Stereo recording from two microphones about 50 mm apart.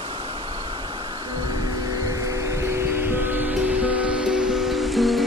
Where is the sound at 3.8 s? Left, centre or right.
Right; by 5.3 s centre.